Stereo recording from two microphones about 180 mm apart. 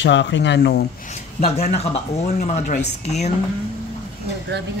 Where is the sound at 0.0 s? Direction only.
85° left.